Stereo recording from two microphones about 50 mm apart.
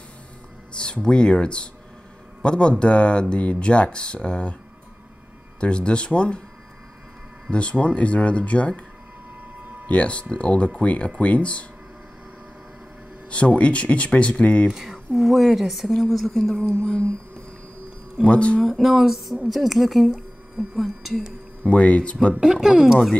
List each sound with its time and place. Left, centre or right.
0.7 s speech: centre
5.6 s speech: left
7.5 s speech: left
9.8 s speech: left
13.3 s speech: left
14.7 s speech: centre
18.2 s speech: left
18.6 s speech: centre
21.6 s speech: left
22.4 s speech: centre